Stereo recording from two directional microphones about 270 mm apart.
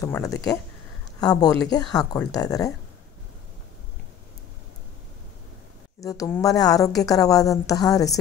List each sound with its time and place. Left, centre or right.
0.0 s a woman's voice: centre
5.9 s a woman's voice: centre